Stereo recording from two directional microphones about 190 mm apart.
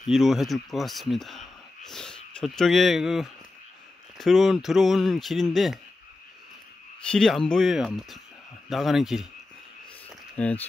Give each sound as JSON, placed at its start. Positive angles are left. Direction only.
{"t": 0.0, "sound": "speech", "side_deg": 0}
{"t": 7.1, "sound": "speech", "side_deg": 5}
{"t": 10.3, "sound": "speech", "side_deg": 5}